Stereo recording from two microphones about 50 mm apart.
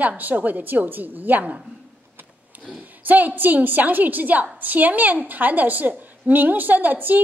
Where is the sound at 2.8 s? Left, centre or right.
Right.